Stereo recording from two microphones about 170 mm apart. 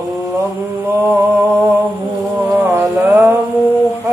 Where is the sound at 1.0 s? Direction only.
10° right (ahead or behind).